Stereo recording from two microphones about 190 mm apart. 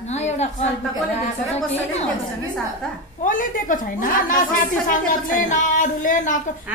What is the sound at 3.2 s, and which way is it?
A woman's voice, 45° left (ahead or behind).